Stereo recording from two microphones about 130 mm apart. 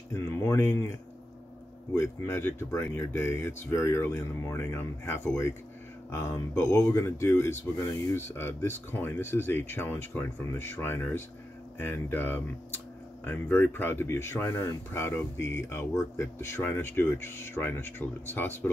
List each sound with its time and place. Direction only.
0.1 s speech: 20° left (ahead or behind)
2.0 s speech: 20° left (ahead or behind)